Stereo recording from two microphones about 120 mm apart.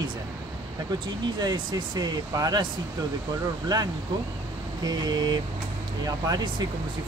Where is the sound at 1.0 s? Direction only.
40° right (ahead or behind).